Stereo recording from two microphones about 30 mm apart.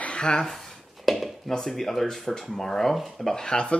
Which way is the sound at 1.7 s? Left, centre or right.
Centre.